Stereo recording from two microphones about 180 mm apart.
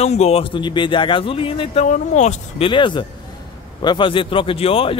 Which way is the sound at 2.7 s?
25° left (ahead or behind).